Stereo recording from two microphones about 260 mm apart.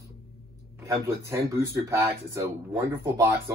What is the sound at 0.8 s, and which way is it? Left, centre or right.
Speech, centre.